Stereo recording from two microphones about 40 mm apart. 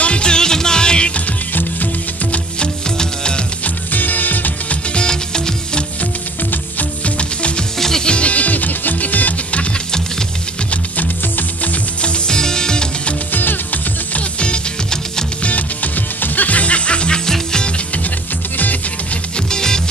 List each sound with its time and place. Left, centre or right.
0.0 s music: left
1.5 s music: left
3.0 s music: left
3.6 s music: left
4.9 s music: centre
7.2 s music: left
7.8 s music: centre
8.1 s music: left
10.7 s music: left
12.0 s music: left
13.3 s music: left
14.1 s music: left
15.4 s music: left; by 17.6 s centre
19.3 s music: centre